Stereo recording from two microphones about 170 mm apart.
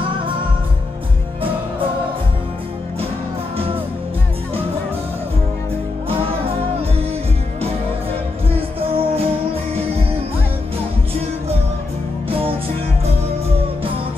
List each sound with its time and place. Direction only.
3.5 s music: 35° right (ahead or behind)
6.0 s music: 35° right (ahead or behind)
8.5 s music: 35° right (ahead or behind)